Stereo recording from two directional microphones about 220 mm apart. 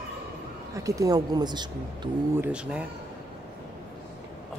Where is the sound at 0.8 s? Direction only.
15° right (ahead or behind).